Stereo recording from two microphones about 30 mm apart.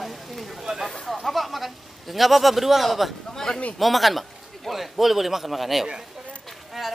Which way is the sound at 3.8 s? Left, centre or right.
Centre.